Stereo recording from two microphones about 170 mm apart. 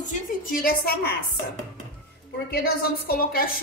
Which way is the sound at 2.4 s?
60° left (ahead or behind).